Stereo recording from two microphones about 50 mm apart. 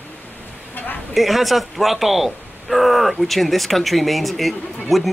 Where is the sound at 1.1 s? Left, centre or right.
Centre.